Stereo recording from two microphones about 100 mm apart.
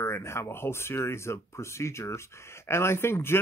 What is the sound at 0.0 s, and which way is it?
Speech, 25° left (ahead or behind).